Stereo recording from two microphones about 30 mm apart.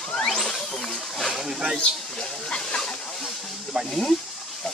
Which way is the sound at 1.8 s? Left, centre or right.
Left.